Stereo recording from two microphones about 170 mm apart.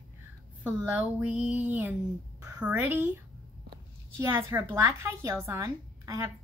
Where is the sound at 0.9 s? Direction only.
10° right (ahead or behind).